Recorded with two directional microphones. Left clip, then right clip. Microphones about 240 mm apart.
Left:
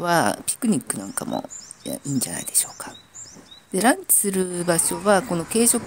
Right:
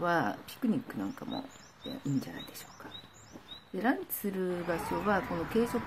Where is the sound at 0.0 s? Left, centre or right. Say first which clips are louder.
Left 10 dB; left.